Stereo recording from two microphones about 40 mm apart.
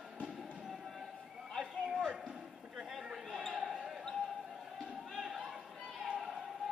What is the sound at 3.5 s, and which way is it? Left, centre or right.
Basketball bounce, centre.